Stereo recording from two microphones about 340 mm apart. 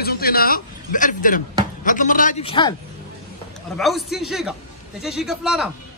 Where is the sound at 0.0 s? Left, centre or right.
Left.